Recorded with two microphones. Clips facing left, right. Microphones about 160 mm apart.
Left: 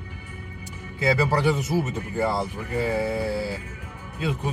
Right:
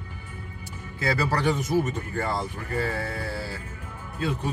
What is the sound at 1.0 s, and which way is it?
A man's voice, 15° left (ahead or behind).